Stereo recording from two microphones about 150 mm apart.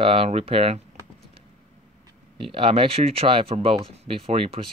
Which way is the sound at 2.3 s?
35° right (ahead or behind).